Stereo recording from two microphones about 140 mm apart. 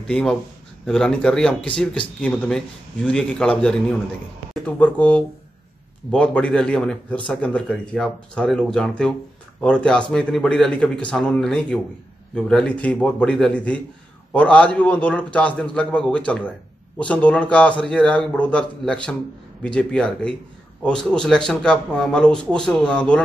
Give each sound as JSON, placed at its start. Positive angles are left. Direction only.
{"t": 0.0, "sound": "a man's voice", "side_deg": 5}